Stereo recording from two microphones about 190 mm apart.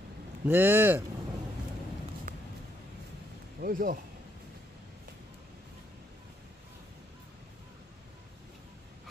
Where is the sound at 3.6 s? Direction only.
45° right (ahead or behind).